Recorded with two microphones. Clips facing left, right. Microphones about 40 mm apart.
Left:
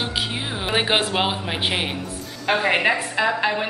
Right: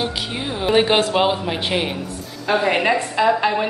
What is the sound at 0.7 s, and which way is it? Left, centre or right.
A woman's voice, centre.